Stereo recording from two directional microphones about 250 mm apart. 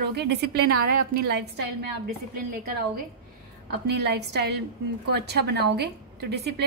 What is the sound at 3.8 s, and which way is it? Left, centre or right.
A woman's voice, right.